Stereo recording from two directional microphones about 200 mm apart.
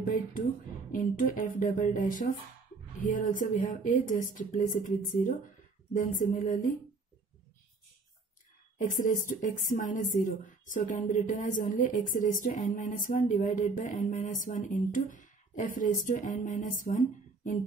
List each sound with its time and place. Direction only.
0.0 s a woman's voice: 45° left (ahead or behind)
8.7 s a woman's voice: 40° left (ahead or behind)